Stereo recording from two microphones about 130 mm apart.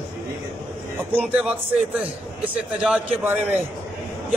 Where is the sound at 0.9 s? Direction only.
10° right (ahead or behind).